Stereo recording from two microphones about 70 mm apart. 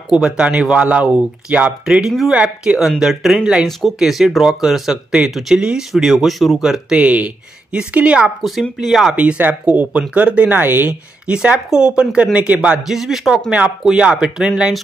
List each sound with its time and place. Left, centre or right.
0.1 s speech: centre
2.0 s speech: centre
2.3 s speech: centre
8.4 s speech: centre
9.1 s speech: centre
10.9 s speech: centre
12.8 s speech: centre